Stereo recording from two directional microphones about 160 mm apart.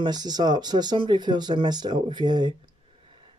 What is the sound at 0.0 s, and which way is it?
Speech, 25° right (ahead or behind).